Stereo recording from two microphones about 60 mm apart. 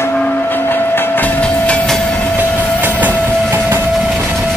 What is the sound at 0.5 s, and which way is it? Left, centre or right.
Train, left.